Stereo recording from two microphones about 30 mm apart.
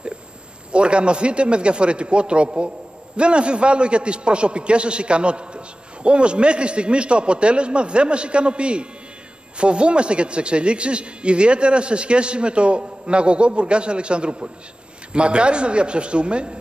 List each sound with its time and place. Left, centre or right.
0.7 s a man's voice: right